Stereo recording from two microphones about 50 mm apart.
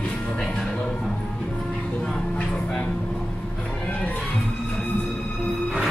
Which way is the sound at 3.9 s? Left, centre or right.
Left.